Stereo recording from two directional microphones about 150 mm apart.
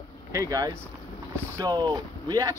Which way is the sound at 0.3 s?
20° right (ahead or behind).